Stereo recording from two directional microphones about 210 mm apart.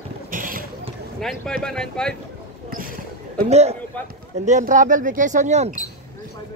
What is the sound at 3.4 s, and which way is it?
Speech, 30° right (ahead or behind).